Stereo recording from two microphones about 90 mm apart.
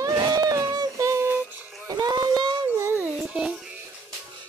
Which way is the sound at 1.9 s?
45° right (ahead or behind).